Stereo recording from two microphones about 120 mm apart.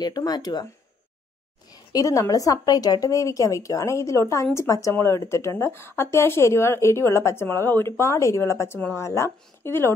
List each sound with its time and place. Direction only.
0.0 s speech: 35° left (ahead or behind)
1.9 s speech: 30° left (ahead or behind)